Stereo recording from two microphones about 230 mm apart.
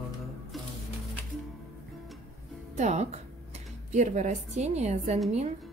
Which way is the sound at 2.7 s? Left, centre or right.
Right.